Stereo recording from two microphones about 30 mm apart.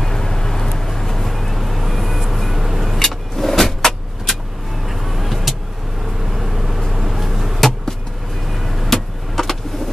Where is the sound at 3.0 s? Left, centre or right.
Centre.